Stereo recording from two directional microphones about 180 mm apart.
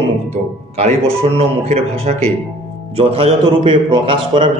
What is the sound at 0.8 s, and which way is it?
A man's voice, 35° right (ahead or behind).